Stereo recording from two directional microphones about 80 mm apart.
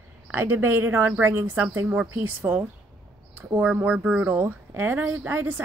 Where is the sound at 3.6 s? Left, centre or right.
Centre.